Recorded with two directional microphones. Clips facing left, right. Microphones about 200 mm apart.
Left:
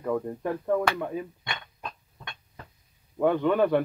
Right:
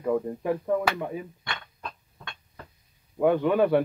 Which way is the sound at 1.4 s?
20° left (ahead or behind).